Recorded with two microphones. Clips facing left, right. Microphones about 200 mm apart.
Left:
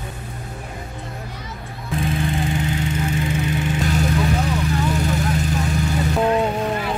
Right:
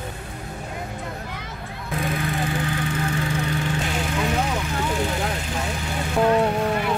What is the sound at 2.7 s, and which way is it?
Vehicle, 20° left (ahead or behind).